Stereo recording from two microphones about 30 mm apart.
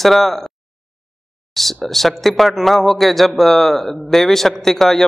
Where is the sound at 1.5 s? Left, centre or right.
Centre.